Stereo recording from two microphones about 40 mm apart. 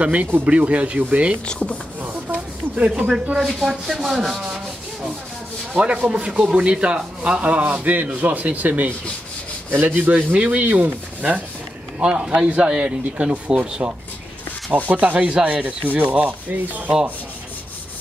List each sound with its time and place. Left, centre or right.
0.0 s speech: right
1.4 s speech: left
2.0 s a sound: right
2.7 s speech: right
3.3 s speech: centre
3.6 s rub: centre
5.8 s speech: right
7.8 s rub: right
9.8 s speech: right
12.0 s speech: right
14.9 s speech: right
15.1 s rub: right